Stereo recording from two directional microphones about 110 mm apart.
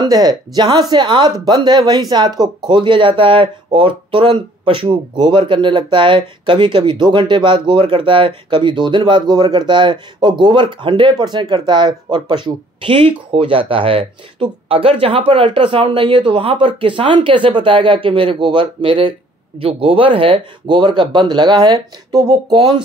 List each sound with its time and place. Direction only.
0.0 s speech: 35° right (ahead or behind)